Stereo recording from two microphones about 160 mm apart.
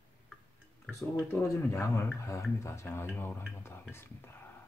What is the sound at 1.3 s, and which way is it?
Speech, 15° left (ahead or behind).